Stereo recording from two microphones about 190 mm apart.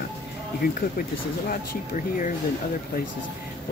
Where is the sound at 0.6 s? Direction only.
55° left (ahead or behind).